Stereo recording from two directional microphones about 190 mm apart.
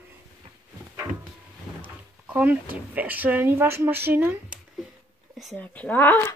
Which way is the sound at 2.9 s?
10° right (ahead or behind).